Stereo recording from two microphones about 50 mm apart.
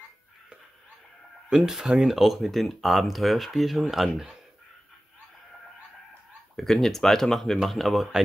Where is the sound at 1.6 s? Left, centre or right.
Centre.